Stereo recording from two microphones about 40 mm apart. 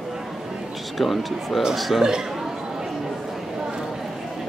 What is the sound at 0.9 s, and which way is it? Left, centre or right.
Speech, centre.